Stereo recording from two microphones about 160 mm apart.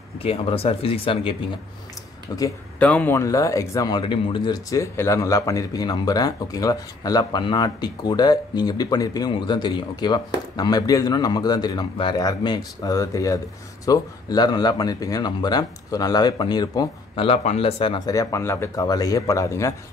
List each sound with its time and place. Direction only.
0.2 s speech: 35° left (ahead or behind)
2.8 s speech: 10° left (ahead or behind)